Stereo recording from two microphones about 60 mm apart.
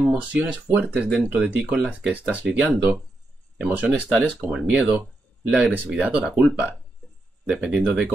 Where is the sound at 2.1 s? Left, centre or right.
Right.